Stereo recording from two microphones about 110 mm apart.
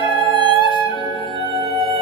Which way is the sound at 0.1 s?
50° right (ahead or behind).